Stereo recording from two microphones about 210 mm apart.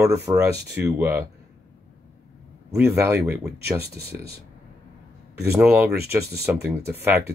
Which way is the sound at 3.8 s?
50° right (ahead or behind).